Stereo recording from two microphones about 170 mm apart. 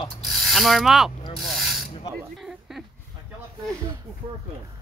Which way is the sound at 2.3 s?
Centre (ahead or behind).